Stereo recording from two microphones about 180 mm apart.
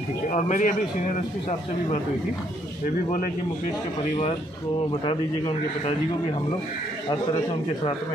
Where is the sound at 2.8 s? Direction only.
50° left (ahead or behind).